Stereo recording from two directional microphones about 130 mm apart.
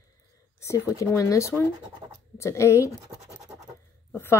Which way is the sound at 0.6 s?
20° left (ahead or behind).